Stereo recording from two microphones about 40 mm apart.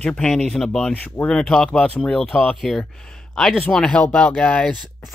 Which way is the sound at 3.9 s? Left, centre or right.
Left.